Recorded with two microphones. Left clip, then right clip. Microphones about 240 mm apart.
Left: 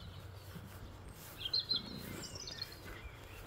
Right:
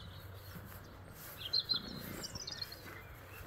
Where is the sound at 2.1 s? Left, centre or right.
Right.